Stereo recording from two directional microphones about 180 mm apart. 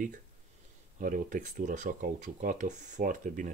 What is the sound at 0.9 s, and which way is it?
Speech, 50° right (ahead or behind).